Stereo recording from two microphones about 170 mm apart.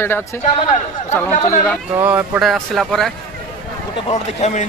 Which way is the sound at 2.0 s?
10° right (ahead or behind).